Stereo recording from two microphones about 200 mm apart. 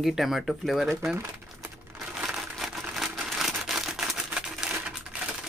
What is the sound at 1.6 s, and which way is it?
Crumpling, centre (ahead or behind).